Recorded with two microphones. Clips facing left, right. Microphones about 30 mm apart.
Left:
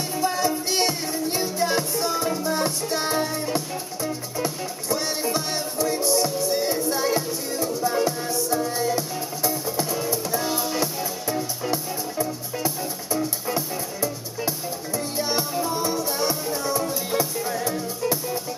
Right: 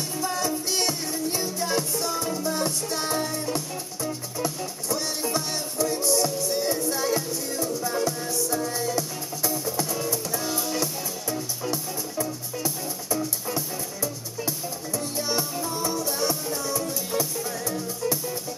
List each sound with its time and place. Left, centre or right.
0.2 s music: left
15.5 s music: centre
15.8 s music: left